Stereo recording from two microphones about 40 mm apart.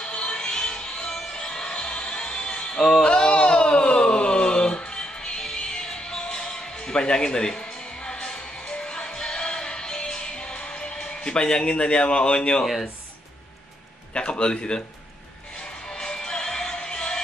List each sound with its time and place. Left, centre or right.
0.0 s music: left
3.0 s a sound: left
14.1 s a man's voice: left
15.9 s music: left